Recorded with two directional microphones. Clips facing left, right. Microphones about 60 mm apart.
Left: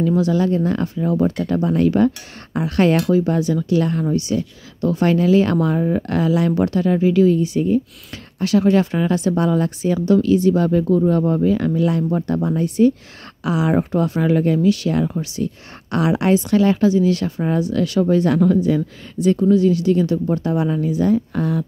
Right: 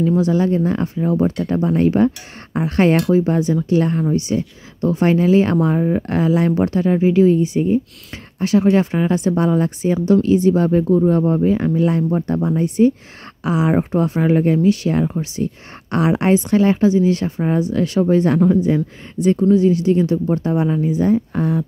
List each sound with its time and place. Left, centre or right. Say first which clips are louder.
0.0 s speech: right 1 dB; right
12.0 s speech: right 1 dB; centre
12.3 s speech: right 1 dB; right